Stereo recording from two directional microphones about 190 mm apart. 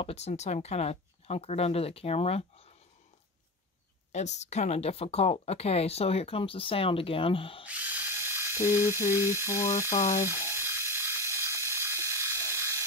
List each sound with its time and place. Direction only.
0.0 s speech: 35° left (ahead or behind)
4.1 s speech: 35° left (ahead or behind)
7.6 s ratchet: 5° right (ahead or behind)
8.6 s electric toothbrush: 10° right (ahead or behind)
10.4 s a sound: 10° right (ahead or behind)